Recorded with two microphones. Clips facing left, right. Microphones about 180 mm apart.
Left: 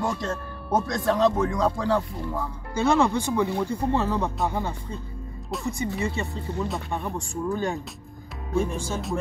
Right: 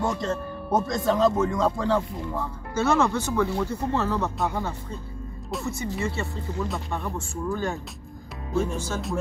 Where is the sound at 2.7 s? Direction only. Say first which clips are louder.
Left 1 dB; 15° left (ahead or behind).